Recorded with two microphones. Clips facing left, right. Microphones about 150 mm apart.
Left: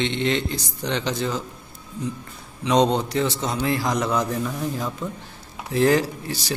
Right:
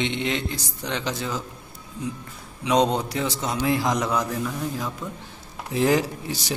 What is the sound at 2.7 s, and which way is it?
Speech, 5° right (ahead or behind).